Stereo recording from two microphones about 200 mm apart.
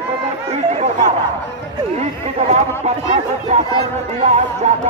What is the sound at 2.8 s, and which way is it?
Speech, 35° right (ahead or behind).